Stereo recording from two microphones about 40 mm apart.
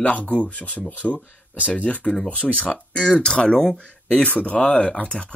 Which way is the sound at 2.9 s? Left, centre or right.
Left.